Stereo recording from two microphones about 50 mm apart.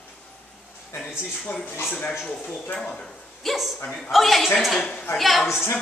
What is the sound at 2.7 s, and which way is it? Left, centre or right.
Speech, centre.